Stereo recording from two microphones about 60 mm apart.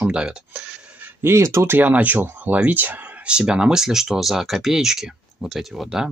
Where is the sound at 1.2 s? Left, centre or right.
Right.